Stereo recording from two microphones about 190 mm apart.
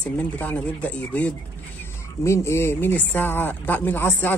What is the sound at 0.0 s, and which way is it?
Speech, 10° left (ahead or behind).